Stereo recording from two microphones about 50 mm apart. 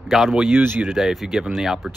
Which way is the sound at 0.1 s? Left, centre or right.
Centre.